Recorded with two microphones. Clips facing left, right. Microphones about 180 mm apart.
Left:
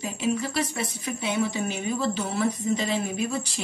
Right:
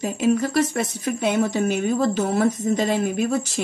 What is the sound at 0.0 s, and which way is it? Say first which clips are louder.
Speech: right 7 dB; 45° right (ahead or behind).